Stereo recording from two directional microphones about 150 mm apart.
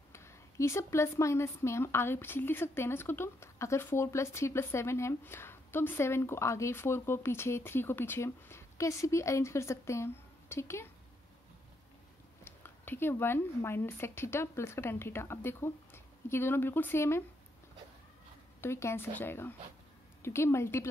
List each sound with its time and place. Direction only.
0.1 s speech: 20° left (ahead or behind)
12.4 s speech: 15° left (ahead or behind)
18.6 s speech: 15° left (ahead or behind)